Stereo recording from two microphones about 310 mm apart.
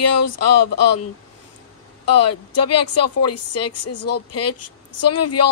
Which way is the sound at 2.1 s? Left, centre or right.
Left.